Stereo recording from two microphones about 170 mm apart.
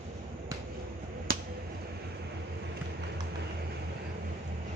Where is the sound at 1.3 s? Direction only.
65° right (ahead or behind).